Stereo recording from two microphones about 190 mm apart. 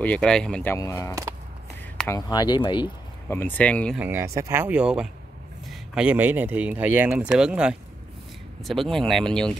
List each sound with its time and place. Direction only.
0.0 s speech: 5° left (ahead or behind)
0.7 s speech: 15° left (ahead or behind)
3.3 s speech: 10° left (ahead or behind)
4.0 s speech: 10° right (ahead or behind); by 9.6 s 5° left (ahead or behind)